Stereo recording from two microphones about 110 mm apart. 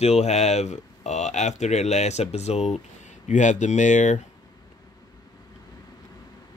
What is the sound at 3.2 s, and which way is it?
Speech, 90° left.